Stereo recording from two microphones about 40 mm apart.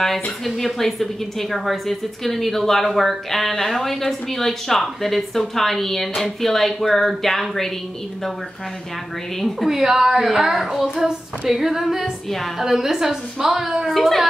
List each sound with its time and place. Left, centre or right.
0.0 s a woman's voice: centre
9.6 s a child's voice: centre
13.9 s a child's voice: centre